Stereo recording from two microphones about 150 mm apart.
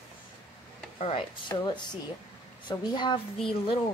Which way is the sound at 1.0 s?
40° left (ahead or behind).